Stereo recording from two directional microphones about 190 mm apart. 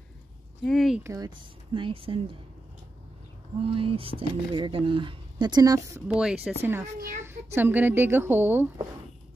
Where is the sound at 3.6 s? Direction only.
30° right (ahead or behind).